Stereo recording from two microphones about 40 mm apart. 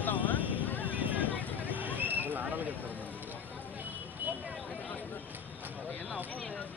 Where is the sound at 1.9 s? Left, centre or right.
Right.